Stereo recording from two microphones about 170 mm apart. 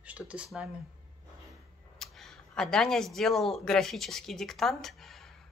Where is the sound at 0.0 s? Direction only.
5° right (ahead or behind).